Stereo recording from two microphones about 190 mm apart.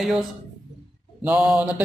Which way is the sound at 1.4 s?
Centre (ahead or behind).